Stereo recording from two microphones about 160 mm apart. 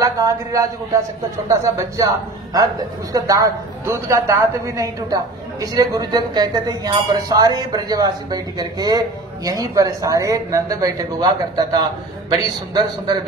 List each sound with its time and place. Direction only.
0.0 s a man's voice: 20° right (ahead or behind)